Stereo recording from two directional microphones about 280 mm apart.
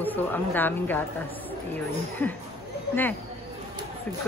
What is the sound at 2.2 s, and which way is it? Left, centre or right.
Speech, centre.